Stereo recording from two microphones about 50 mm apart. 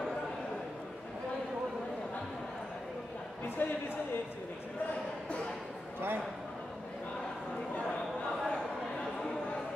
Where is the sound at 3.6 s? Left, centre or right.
Left.